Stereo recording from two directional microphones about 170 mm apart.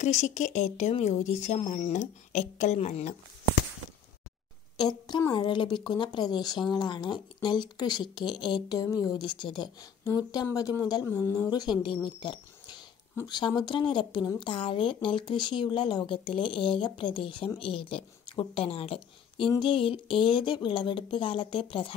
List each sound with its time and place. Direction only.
0.0 s speech: 40° left (ahead or behind)
4.8 s speech: 25° left (ahead or behind)
12.2 s a sound: 25° left (ahead or behind)
13.1 s speech: 20° left (ahead or behind)